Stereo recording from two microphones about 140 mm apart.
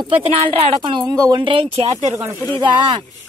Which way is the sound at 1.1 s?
20° right (ahead or behind).